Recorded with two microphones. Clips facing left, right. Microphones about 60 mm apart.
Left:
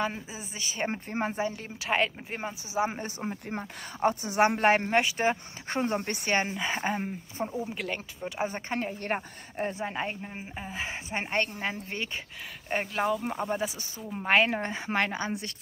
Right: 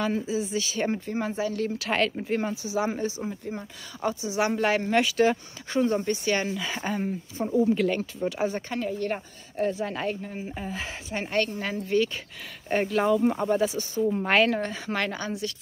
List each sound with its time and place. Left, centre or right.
0.0 s speech: left
1.5 s a woman's voice: centre
3.1 s speech: left
7.4 s a woman's voice: centre
8.3 s speech: left
12.6 s a woman's voice: centre